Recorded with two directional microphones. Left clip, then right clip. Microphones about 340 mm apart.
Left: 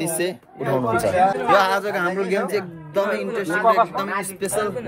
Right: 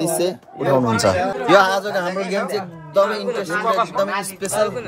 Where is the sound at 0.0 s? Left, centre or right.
Centre.